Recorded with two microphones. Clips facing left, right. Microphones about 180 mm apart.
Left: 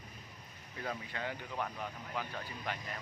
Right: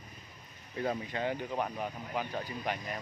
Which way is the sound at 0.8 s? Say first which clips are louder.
Right 7 dB; 25° right (ahead or behind).